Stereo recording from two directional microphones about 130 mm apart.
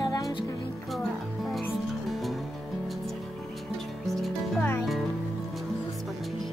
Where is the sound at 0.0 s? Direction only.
30° left (ahead or behind).